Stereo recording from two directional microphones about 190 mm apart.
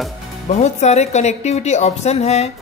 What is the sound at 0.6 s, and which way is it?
A woman's voice, 35° left (ahead or behind).